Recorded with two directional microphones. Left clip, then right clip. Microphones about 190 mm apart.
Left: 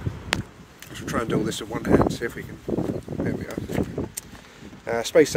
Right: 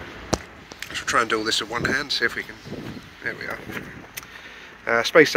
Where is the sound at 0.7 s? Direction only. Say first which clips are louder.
Right 7 dB; 25° left (ahead or behind).